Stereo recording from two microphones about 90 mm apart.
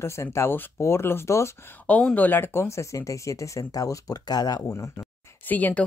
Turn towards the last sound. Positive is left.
turn(degrees=20)  # may be behind; listen again after turning